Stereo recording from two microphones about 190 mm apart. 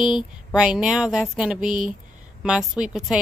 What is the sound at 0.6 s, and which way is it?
A woman's voice, 5° right (ahead or behind).